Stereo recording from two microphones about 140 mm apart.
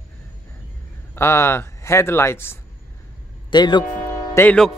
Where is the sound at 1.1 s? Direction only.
20° left (ahead or behind).